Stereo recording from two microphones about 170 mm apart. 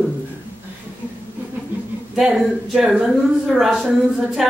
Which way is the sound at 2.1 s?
Centre (ahead or behind).